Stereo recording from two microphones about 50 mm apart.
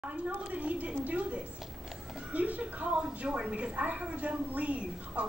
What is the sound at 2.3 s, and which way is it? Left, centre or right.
A woman's voice, right.